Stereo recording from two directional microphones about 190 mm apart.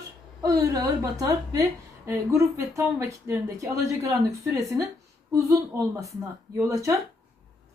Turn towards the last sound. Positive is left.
turn(degrees=-15)  # may be behind; listen again after turning